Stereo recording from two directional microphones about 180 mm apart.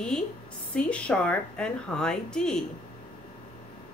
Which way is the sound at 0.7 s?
5° left (ahead or behind).